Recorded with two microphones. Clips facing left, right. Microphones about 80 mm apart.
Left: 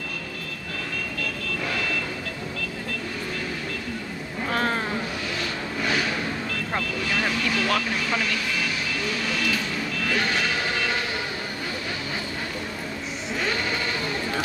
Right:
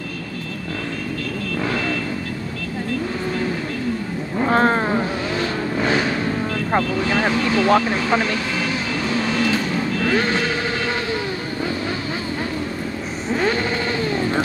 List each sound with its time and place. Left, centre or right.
4.4 s a sound: right
6.7 s speech: right
9.1 s vehicle: right